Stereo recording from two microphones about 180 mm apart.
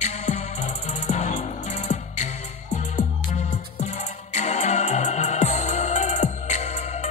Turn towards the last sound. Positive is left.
turn(degrees=40)  # may be behind; listen again after turning